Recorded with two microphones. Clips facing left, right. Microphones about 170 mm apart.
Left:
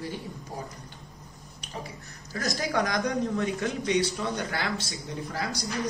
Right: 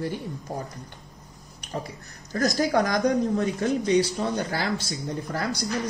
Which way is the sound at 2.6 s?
40° right (ahead or behind).